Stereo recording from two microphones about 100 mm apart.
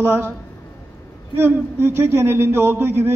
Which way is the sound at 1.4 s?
20° right (ahead or behind).